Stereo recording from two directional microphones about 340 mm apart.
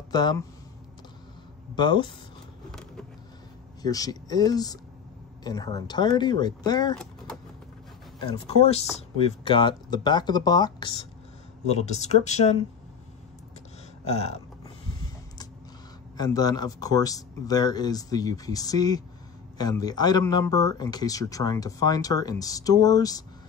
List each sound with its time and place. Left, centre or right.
0.1 s speech: centre
1.8 s speech: centre
3.8 s speech: centre
8.5 s speech: centre
14.0 s speech: centre
16.2 s speech: centre